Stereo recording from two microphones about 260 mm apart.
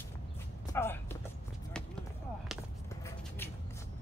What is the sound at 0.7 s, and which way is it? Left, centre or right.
Music, centre.